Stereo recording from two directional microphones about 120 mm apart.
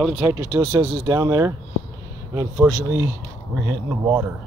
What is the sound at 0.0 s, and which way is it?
Speech, 15° right (ahead or behind).